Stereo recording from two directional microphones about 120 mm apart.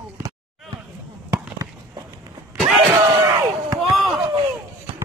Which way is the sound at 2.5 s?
5° right (ahead or behind).